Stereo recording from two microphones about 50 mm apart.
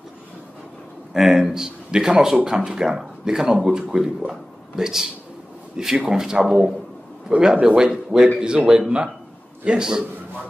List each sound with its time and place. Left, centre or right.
1.1 s speech: centre
4.3 s a sound: centre
5.9 s a man's voice: centre